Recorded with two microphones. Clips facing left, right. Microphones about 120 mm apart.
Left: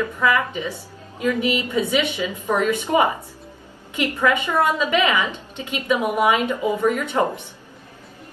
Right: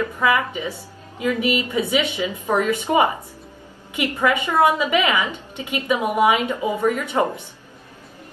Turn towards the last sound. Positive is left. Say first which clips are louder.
# even
turn(degrees=-15)  # may be behind; listen again after turning